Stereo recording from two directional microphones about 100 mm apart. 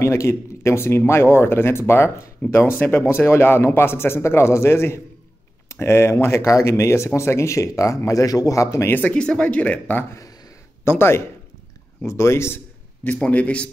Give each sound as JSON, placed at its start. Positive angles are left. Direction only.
{"t": 0.0, "sound": "speech", "side_deg": 30}
{"t": 8.9, "sound": "a man's voice", "side_deg": 15}